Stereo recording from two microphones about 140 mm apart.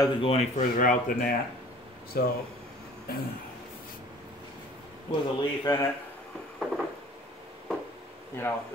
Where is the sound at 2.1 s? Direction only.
90° left.